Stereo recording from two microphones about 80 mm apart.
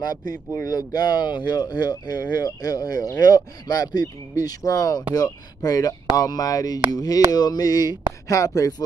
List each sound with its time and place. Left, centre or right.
0.0 s speech: left